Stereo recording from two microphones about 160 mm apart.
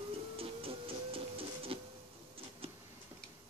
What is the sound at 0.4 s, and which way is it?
Music, 35° right (ahead or behind).